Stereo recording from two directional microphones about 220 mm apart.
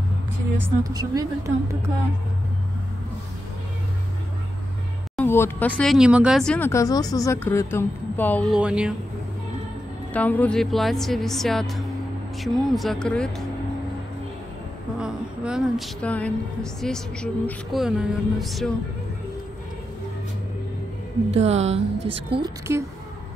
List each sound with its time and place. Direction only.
0.6 s a woman's voice: 15° right (ahead or behind)
5.1 s speech: 10° left (ahead or behind)
8.5 s speech: 5° right (ahead or behind)
10.1 s speech: 5° left (ahead or behind)
15.0 s a woman's voice: 5° right (ahead or behind)
21.3 s a woman's voice: 30° right (ahead or behind)